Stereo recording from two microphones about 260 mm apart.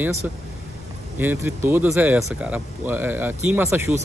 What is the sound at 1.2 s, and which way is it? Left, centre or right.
Speech, centre.